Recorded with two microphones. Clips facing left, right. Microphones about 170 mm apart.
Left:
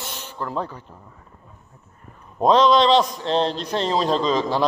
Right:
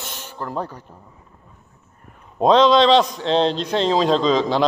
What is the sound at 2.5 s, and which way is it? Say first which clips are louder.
A man's voice: right 2 dB; 90° right.